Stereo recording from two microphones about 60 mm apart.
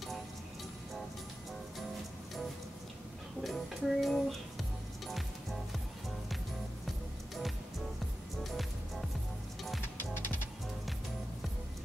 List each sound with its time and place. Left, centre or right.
3.4 s music: centre
9.9 s music: left